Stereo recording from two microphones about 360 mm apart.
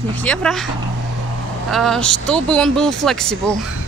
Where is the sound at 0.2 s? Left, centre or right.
Centre.